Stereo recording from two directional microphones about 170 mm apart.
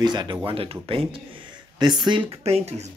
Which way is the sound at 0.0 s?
25° right (ahead or behind).